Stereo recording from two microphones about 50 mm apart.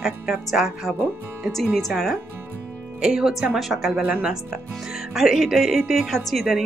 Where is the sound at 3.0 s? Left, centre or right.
Centre.